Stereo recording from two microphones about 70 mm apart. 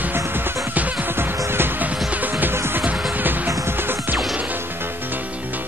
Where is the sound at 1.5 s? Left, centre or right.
Right.